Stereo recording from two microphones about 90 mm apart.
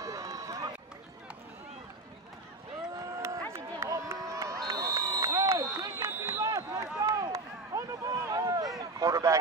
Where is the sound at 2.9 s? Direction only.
40° right (ahead or behind).